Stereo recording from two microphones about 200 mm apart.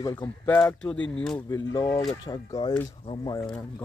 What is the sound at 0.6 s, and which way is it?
Speech, 5° left (ahead or behind).